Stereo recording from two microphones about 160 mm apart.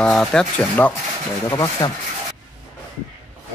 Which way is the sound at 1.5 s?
20° left (ahead or behind).